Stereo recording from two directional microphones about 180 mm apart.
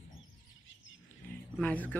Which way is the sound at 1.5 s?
10° left (ahead or behind).